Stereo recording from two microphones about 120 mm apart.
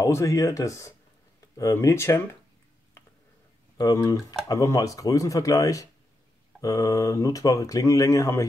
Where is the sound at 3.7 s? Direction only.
30° left (ahead or behind).